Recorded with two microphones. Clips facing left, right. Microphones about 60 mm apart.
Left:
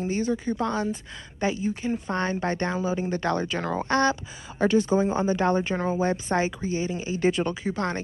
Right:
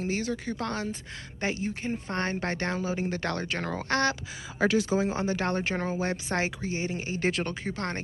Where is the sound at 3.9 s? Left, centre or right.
Right.